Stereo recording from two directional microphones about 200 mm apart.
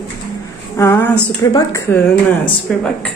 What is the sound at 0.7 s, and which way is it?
A woman's voice, 15° left (ahead or behind).